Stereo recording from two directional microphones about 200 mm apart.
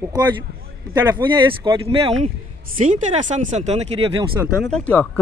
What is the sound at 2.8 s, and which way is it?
Speech, 40° right (ahead or behind).